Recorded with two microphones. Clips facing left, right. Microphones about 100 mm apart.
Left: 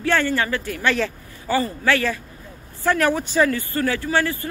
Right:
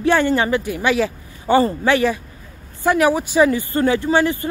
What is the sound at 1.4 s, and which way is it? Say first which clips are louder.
A man's voice: right 6 dB; 25° right (ahead or behind).